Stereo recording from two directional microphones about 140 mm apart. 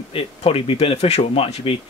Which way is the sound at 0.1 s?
40° left (ahead or behind).